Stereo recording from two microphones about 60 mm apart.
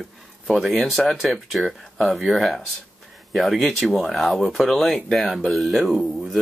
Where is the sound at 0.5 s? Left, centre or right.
Centre.